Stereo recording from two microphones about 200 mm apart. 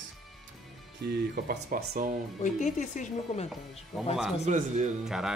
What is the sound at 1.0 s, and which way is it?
Speech, 55° right (ahead or behind).